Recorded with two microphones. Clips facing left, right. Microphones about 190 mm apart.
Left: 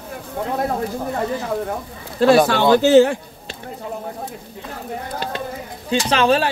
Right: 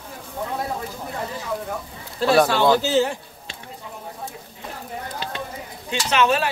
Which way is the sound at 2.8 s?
60° left (ahead or behind).